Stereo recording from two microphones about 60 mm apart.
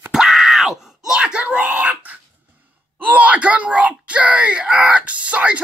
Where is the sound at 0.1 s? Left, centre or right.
Centre; by 2.1 s right.